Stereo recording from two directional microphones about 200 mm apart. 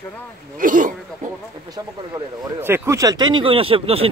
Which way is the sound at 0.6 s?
40° right (ahead or behind).